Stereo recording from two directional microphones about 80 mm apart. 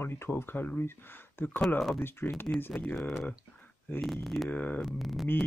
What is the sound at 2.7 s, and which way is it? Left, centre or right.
Speech, centre.